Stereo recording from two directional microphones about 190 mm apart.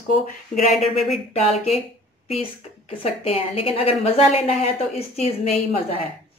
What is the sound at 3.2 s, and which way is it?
A woman's voice, 30° left (ahead or behind).